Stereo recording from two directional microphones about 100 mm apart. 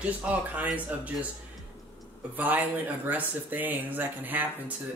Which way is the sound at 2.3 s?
15° right (ahead or behind).